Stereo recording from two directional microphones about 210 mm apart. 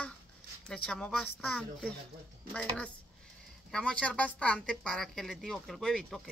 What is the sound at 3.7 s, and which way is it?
A woman's voice, 5° left (ahead or behind).